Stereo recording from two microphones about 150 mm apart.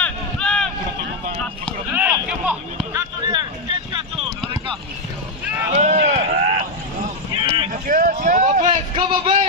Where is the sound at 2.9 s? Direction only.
25° right (ahead or behind).